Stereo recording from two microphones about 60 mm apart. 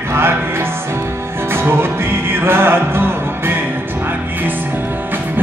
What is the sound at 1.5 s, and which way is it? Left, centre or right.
Music, right.